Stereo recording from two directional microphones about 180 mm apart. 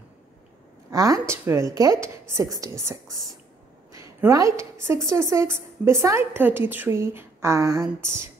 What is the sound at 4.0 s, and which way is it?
A woman's voice, 15° right (ahead or behind).